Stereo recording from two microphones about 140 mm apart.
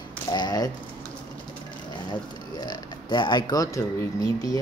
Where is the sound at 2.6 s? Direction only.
35° left (ahead or behind).